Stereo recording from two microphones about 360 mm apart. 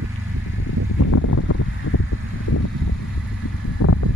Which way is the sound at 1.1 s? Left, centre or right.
Left.